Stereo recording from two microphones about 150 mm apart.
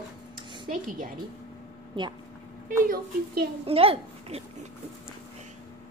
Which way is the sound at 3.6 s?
40° right (ahead or behind).